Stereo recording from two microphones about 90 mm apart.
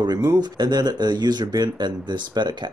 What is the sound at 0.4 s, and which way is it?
Speech, 50° right (ahead or behind).